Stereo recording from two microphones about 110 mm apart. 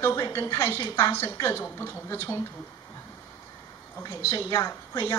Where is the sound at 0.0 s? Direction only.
25° left (ahead or behind).